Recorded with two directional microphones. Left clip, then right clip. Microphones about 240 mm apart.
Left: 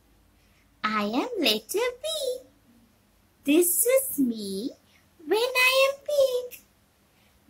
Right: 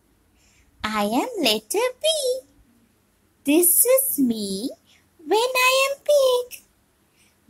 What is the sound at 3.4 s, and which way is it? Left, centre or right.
Speech, centre.